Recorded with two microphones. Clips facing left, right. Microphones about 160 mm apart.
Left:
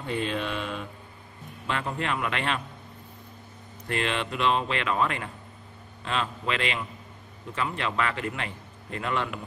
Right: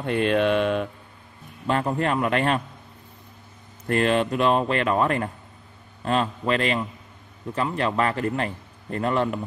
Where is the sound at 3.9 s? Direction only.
45° right (ahead or behind).